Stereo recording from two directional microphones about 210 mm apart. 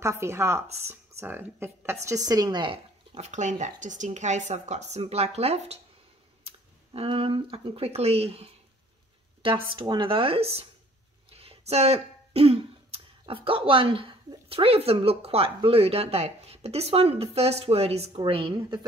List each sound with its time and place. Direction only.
0.0 s speech: 10° right (ahead or behind); by 5.8 s 30° right (ahead or behind)
6.4 s a sound: 25° right (ahead or behind)
7.5 s speech: 25° right (ahead or behind)